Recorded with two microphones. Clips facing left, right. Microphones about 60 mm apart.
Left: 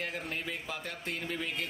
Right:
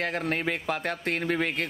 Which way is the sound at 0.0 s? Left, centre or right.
Right.